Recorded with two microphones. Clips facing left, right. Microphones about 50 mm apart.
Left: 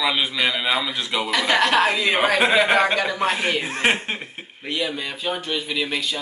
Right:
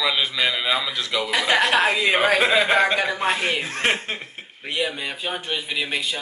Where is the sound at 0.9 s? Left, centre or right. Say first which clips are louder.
Even; centre.